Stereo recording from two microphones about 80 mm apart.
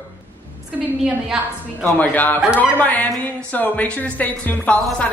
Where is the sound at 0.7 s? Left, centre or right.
Centre.